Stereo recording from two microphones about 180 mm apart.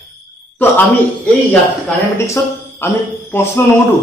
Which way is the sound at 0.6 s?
10° left (ahead or behind).